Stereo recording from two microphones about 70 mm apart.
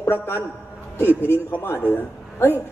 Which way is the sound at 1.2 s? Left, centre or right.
Left.